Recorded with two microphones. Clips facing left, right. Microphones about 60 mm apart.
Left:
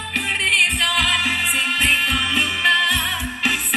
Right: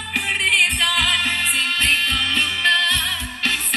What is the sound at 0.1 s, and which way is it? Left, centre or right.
Music, centre.